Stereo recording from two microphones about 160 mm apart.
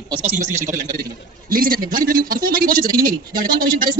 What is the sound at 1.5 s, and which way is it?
A man's voice, 65° right (ahead or behind).